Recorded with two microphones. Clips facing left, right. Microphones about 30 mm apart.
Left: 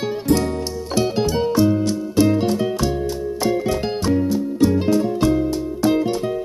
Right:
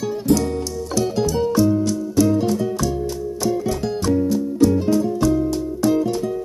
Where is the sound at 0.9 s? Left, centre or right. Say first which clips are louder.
Left 1 dB; left.